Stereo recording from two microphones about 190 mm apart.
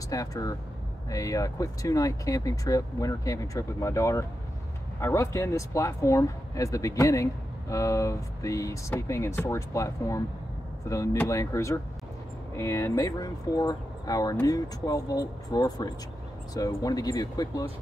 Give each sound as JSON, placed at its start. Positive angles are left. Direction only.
{"t": 0.1, "sound": "speech", "side_deg": 20}